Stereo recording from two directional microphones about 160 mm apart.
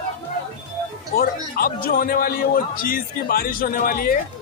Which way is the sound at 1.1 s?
70° left (ahead or behind).